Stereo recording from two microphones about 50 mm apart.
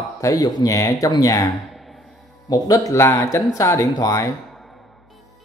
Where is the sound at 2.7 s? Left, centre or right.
Left.